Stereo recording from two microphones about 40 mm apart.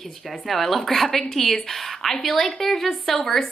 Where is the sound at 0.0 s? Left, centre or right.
Centre.